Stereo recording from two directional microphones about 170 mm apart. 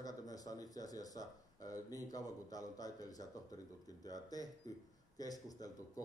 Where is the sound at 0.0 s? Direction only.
20° left (ahead or behind).